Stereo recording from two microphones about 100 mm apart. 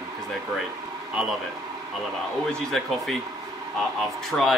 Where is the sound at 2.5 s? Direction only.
5° left (ahead or behind).